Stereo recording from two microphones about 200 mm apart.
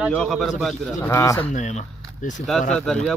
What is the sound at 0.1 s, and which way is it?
Speech, centre (ahead or behind).